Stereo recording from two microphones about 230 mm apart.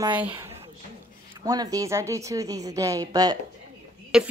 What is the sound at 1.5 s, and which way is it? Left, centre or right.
Speech, centre.